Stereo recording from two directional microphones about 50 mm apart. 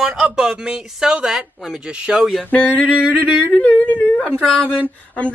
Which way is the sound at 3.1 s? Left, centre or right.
Right.